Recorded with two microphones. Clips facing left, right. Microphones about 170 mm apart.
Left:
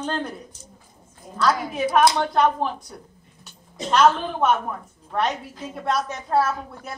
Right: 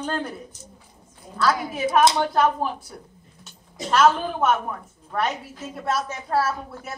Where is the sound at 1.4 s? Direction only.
5° right (ahead or behind).